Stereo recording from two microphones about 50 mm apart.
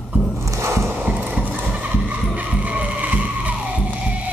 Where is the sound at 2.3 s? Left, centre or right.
Right.